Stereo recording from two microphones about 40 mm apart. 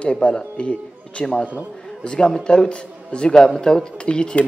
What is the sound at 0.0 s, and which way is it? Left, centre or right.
A woman's voice, left.